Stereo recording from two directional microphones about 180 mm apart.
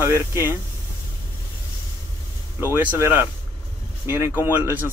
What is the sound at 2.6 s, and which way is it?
Speech, 10° right (ahead or behind).